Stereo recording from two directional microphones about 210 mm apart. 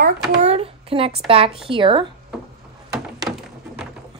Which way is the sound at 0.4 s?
30° right (ahead or behind).